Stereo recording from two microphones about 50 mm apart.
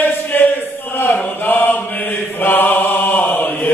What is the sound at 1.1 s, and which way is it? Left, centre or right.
Mantra, left.